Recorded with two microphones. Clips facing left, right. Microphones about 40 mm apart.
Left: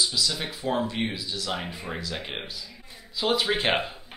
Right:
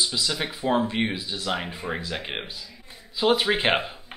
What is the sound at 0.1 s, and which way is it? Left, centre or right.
Speech, right.